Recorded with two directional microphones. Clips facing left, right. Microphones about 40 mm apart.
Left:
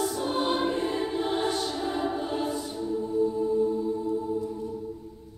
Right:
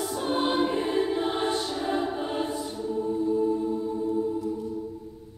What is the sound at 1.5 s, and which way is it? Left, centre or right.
Music, centre.